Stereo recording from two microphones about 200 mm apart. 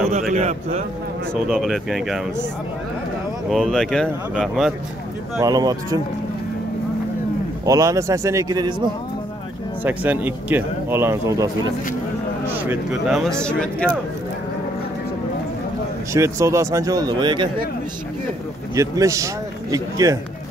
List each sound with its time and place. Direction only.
0.3 s a man's voice: 35° right (ahead or behind)
1.3 s speech: centre (ahead or behind)
3.4 s speech: centre (ahead or behind)
5.4 s speech: 20° right (ahead or behind)
7.6 s speech: 15° right (ahead or behind)
9.8 s speech: 10° right (ahead or behind)
12.6 s speech: centre (ahead or behind)
16.1 s speech: 15° right (ahead or behind)
18.8 s speech: 15° right (ahead or behind)